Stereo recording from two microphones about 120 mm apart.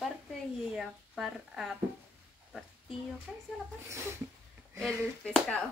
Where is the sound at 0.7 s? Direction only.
5° right (ahead or behind).